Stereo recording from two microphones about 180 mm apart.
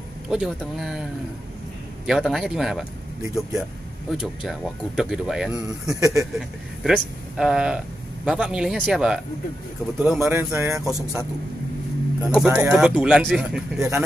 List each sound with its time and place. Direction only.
0.3 s speech: centre (ahead or behind)
2.0 s speech: centre (ahead or behind)
5.9 s speech: 20° right (ahead or behind)
6.3 s speech: centre (ahead or behind)
10.9 s speech: 5° right (ahead or behind)
12.4 s speech: 10° right (ahead or behind)